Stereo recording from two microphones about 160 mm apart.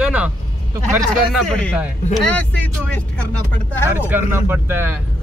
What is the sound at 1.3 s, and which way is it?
A man's voice, 5° left (ahead or behind).